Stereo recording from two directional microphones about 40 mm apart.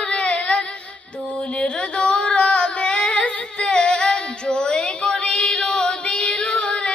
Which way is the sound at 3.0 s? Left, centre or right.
Left.